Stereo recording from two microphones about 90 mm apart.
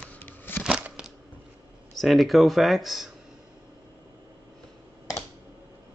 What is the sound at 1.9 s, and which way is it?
Speech, centre (ahead or behind).